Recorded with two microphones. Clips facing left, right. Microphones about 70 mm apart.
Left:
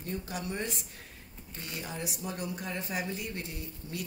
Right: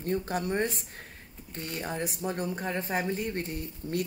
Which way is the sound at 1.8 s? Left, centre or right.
Right.